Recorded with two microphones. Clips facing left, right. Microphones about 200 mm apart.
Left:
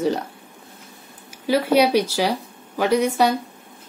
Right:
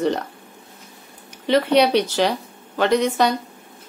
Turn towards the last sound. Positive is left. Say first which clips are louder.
# even
turn(degrees=10)  # may be behind; listen again after turning